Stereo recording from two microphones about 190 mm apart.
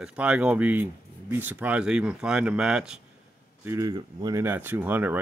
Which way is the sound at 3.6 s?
15° right (ahead or behind).